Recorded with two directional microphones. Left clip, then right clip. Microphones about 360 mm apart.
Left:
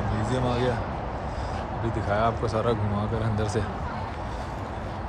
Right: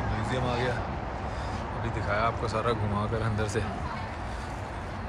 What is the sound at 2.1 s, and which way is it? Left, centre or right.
Speech, centre.